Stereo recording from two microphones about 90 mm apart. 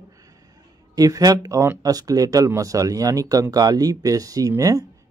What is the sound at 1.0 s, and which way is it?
Speech, 40° right (ahead or behind).